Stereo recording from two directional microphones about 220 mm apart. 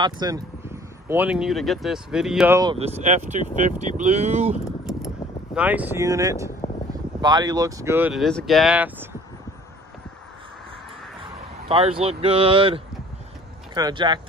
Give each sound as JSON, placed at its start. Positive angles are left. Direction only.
{"t": 0.0, "sound": "speech", "side_deg": -15}
{"t": 2.6, "sound": "speech", "side_deg": -25}
{"t": 5.5, "sound": "speech", "side_deg": -5}
{"t": 11.6, "sound": "speech", "side_deg": -25}